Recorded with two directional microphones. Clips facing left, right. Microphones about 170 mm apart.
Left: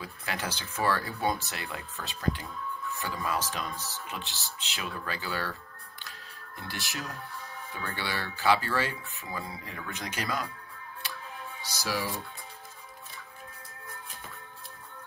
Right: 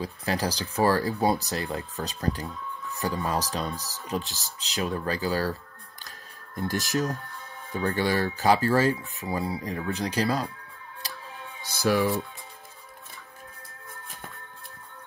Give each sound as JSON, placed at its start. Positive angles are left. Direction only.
{"t": 0.0, "sound": "speech", "side_deg": -35}
{"t": 6.0, "sound": "music", "side_deg": -45}
{"t": 7.7, "sound": "speech", "side_deg": -40}
{"t": 11.7, "sound": "speech", "side_deg": -55}